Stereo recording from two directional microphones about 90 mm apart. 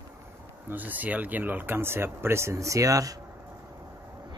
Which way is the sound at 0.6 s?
20° right (ahead or behind).